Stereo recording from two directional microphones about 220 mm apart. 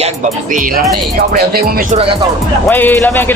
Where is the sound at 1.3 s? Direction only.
45° right (ahead or behind).